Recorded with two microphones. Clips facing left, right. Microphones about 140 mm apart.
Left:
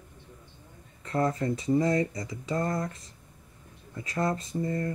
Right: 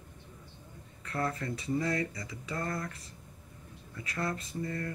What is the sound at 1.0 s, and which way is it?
Speech, 25° left (ahead or behind).